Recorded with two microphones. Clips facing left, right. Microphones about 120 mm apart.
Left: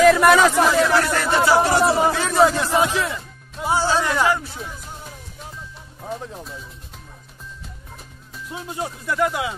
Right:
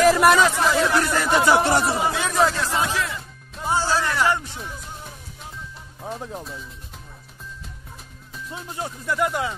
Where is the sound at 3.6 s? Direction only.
15° left (ahead or behind).